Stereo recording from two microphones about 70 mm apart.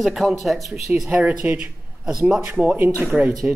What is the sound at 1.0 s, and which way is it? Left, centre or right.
Speech, right.